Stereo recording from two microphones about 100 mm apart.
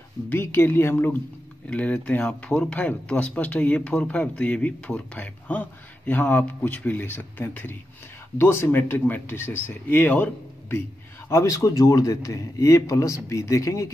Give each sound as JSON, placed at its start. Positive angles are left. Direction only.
{"t": 0.3, "sound": "speech", "side_deg": 25}
{"t": 1.7, "sound": "speech", "side_deg": 15}
{"t": 11.2, "sound": "speech", "side_deg": 30}